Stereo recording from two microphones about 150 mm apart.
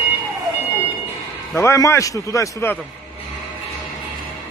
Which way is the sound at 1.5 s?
20° left (ahead or behind).